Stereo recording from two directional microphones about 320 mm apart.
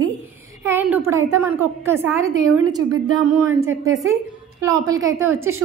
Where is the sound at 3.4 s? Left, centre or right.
Centre.